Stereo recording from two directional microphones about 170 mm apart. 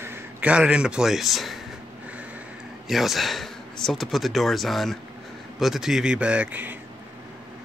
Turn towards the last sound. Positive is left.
turn(degrees=-10)  # may be behind; listen again after turning